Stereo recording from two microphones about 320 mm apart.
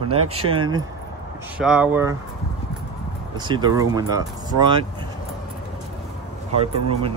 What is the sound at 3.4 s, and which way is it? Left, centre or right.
Speech, centre.